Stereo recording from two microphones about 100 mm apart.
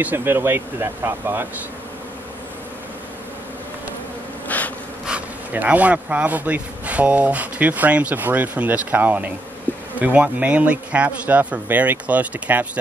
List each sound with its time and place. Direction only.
0.0 s speech: 20° right (ahead or behind)
4.5 s a sound: 15° left (ahead or behind)
5.0 s speech: 15° right (ahead or behind)